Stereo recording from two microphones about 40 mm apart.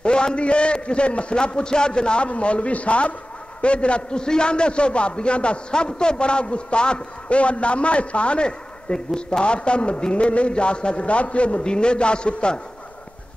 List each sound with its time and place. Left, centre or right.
0.0 s a man's voice: left